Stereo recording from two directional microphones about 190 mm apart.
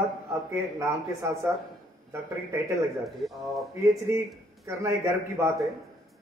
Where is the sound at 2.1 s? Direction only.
15° right (ahead or behind).